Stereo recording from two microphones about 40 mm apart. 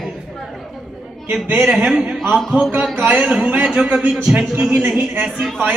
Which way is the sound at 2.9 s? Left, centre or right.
Right.